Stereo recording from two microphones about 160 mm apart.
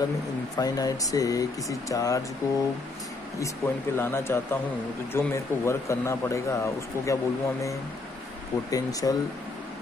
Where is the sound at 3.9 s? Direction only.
15° left (ahead or behind).